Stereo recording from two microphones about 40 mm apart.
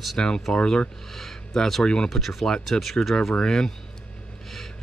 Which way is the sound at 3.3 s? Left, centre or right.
Centre.